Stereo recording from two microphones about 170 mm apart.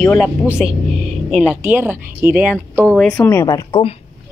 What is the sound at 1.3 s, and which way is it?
Speech, 5° right (ahead or behind).